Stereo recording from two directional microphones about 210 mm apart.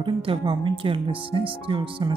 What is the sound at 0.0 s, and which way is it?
Speech, 25° right (ahead or behind).